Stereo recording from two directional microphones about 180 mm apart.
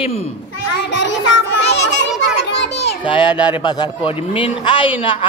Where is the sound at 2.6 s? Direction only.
70° left (ahead or behind).